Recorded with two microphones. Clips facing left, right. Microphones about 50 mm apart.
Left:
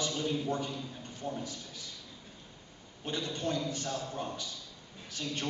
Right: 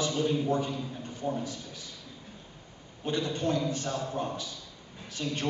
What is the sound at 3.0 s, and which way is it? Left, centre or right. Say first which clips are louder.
A man's voice: right 5 dB; centre.